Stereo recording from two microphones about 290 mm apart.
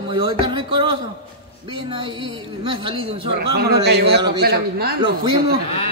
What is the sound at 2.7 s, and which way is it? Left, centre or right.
Speech, centre.